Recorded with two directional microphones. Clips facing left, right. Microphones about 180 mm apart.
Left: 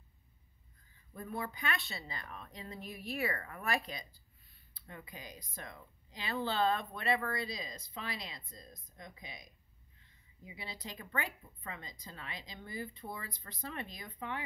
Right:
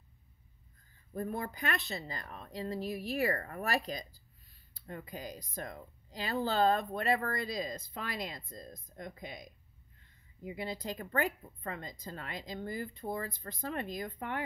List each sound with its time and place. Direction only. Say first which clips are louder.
1.1 s speech: right 4 dB; 45° right (ahead or behind)